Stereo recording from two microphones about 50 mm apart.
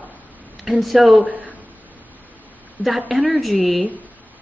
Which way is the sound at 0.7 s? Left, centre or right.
Centre.